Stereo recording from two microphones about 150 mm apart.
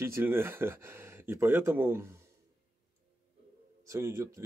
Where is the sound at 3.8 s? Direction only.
20° right (ahead or behind).